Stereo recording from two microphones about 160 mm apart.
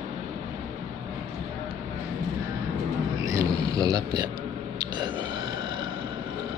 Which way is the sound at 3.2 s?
20° right (ahead or behind).